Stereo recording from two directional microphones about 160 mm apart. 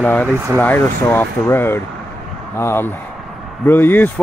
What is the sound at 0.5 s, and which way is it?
Speech, 10° left (ahead or behind).